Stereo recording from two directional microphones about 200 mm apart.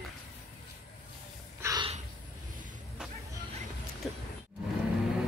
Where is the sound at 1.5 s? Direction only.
15° right (ahead or behind).